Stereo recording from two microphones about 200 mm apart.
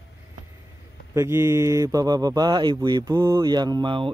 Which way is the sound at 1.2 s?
15° right (ahead or behind).